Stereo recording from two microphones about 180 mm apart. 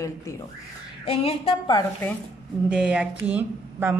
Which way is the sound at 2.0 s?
10° left (ahead or behind).